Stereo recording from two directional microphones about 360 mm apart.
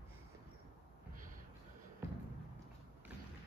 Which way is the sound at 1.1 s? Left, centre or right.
Right.